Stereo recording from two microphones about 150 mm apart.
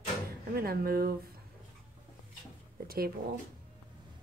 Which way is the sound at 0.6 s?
90° right.